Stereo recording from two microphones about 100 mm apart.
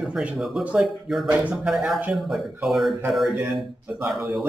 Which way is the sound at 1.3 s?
15° right (ahead or behind).